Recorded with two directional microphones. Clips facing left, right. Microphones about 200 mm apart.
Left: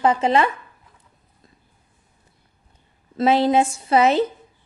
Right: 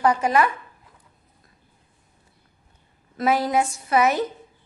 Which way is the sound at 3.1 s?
25° left (ahead or behind).